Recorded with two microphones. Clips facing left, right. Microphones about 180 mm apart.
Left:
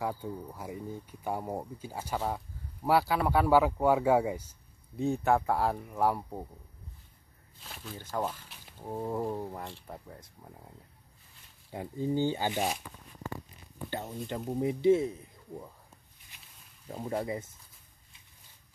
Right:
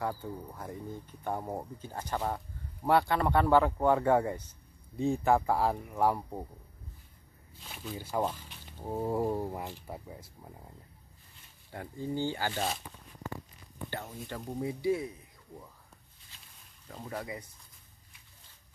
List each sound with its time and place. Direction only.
0.2 s speech: 10° left (ahead or behind)
7.6 s speech: centre (ahead or behind)
11.7 s speech: 20° left (ahead or behind)
13.8 s speech: 20° left (ahead or behind)
16.8 s speech: 25° left (ahead or behind)